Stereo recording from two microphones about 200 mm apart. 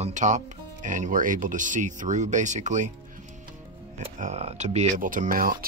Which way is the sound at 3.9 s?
35° right (ahead or behind).